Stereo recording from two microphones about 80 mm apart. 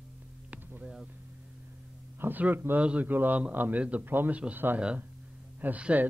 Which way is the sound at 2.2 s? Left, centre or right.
Right.